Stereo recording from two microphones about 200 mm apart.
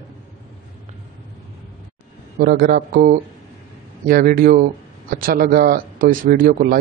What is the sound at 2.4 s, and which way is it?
Speech, 50° right (ahead or behind).